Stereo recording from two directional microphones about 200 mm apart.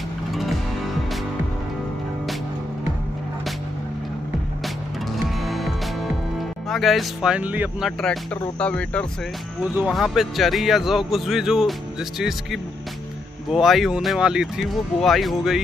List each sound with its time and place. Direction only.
0.3 s music: centre (ahead or behind)
5.1 s music: centre (ahead or behind)
6.7 s speech: centre (ahead or behind)
8.5 s speech: 5° left (ahead or behind)